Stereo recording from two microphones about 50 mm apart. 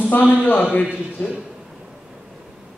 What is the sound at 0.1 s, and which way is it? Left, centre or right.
Speech, left.